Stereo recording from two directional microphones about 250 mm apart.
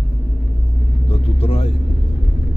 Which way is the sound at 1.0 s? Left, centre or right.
Left.